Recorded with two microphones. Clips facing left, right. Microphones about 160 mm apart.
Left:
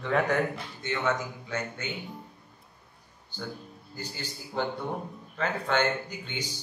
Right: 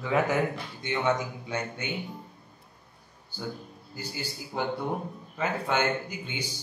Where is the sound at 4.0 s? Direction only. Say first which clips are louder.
Right 2 dB; 10° right (ahead or behind).